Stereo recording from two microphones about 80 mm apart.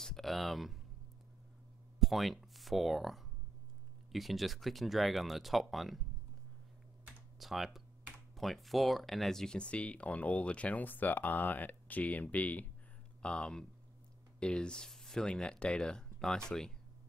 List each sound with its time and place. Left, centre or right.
0.0 s speech: centre
2.0 s speech: centre
7.3 s speech: centre